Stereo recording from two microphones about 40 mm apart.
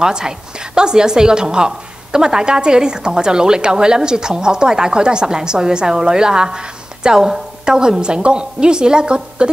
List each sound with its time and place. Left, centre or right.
0.0 s a woman's voice: centre